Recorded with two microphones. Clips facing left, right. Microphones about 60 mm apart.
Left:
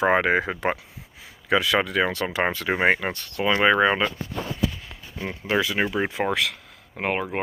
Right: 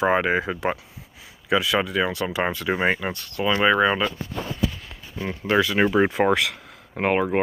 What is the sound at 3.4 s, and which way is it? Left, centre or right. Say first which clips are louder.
Speech: even; left.